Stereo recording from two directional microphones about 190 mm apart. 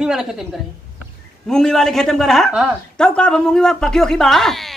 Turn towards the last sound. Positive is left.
turn(degrees=0)  # may be behind; listen again after turning